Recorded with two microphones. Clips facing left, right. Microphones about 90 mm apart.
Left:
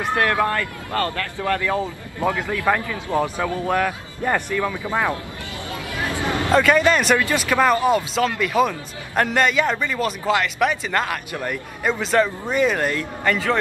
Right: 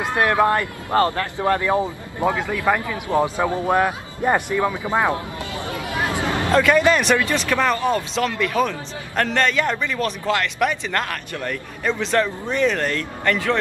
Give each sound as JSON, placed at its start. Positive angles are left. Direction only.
{"t": 0.0, "sound": "speech", "side_deg": -20}
{"t": 5.9, "sound": "hubbub", "side_deg": -20}
{"t": 6.5, "sound": "a man's voice", "side_deg": 0}